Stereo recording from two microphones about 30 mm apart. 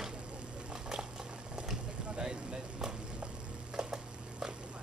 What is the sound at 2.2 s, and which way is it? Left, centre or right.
Vehicle, right.